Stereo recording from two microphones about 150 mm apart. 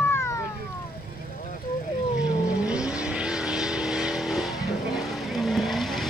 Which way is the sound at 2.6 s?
5° right (ahead or behind).